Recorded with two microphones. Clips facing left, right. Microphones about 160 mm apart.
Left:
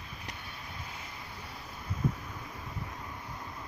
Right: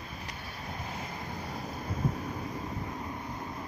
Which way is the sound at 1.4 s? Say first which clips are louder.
Right 7 dB; 45° right (ahead or behind).